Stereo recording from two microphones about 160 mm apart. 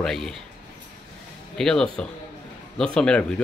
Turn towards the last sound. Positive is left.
turn(degrees=5)  # may be behind; listen again after turning